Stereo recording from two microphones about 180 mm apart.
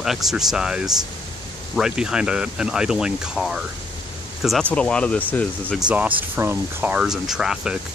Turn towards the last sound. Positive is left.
turn(degrees=-5)  # may be behind; listen again after turning